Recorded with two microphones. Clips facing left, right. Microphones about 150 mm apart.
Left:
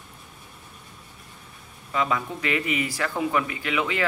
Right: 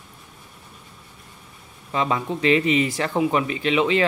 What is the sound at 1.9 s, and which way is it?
Speech, 25° right (ahead or behind).